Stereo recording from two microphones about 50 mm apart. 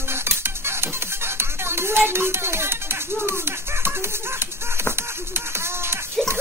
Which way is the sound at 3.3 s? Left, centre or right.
Right.